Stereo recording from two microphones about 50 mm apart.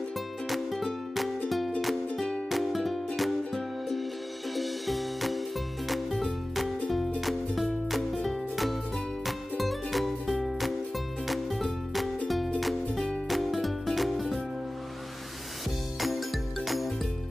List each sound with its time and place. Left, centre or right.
0.5 s music: centre
2.1 s music: centre
2.5 s music: centre
16.0 s music: centre